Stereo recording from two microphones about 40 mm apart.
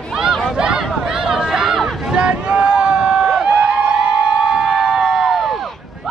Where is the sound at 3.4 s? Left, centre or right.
Right.